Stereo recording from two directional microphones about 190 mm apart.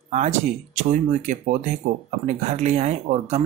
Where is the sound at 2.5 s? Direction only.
35° right (ahead or behind).